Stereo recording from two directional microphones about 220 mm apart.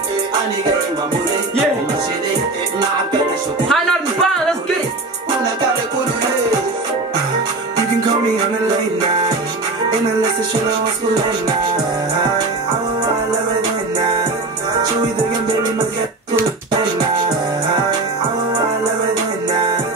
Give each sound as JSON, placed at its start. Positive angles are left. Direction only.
{"t": 3.6, "sound": "music", "side_deg": 5}